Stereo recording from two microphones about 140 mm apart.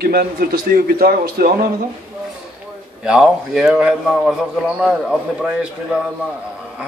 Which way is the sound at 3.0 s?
5° right (ahead or behind).